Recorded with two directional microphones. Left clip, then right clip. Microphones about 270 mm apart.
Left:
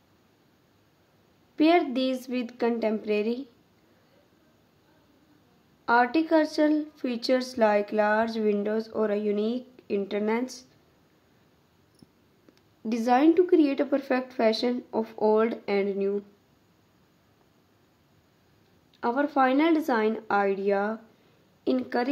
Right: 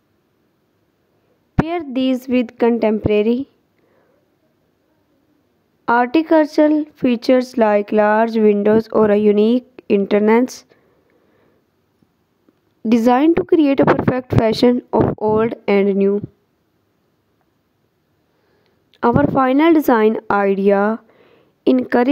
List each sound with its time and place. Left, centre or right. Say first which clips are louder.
1.5 s speech: right 1 dB; right
5.9 s speech: right 8 dB; right
12.8 s speech: right 8 dB; right
18.9 s speech: right 12 dB; right